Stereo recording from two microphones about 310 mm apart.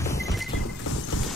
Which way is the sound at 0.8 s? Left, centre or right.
Left.